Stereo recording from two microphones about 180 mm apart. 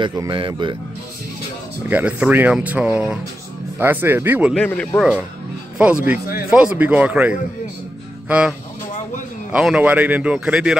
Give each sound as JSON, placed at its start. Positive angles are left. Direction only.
{"t": 0.0, "sound": "speech", "side_deg": -25}
{"t": 1.9, "sound": "speech", "side_deg": -10}
{"t": 4.6, "sound": "speech", "side_deg": 5}
{"t": 5.8, "sound": "speech", "side_deg": -5}